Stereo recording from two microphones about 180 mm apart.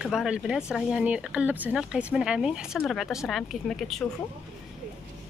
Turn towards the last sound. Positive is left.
turn(degrees=0)  # may be behind; listen again after turning